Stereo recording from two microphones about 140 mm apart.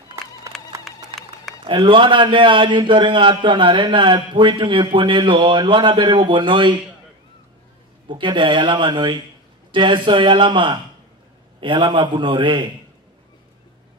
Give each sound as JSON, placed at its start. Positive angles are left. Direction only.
{"t": 0.9, "sound": "a sound", "side_deg": 0}
{"t": 1.6, "sound": "a man's voice", "side_deg": -35}
{"t": 8.1, "sound": "a man's voice", "side_deg": -35}